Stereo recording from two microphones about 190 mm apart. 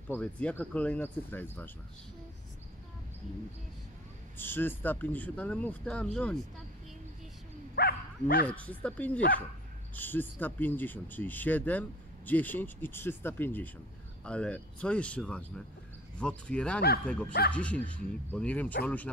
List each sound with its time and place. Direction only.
0.1 s speech: 5° left (ahead or behind)
4.4 s speech: 10° left (ahead or behind)
7.7 s bow-wow: 55° left (ahead or behind)
8.5 s speech: 5° left (ahead or behind)